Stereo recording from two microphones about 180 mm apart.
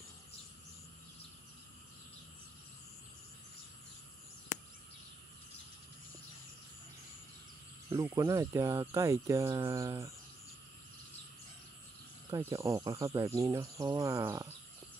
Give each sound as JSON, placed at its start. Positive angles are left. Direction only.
{"t": 7.9, "sound": "speech", "side_deg": -15}
{"t": 12.3, "sound": "speech", "side_deg": -15}